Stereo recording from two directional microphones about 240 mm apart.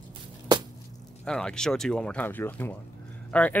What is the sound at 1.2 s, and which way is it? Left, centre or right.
Speech, centre.